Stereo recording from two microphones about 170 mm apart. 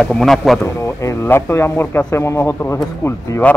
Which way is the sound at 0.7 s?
15° left (ahead or behind).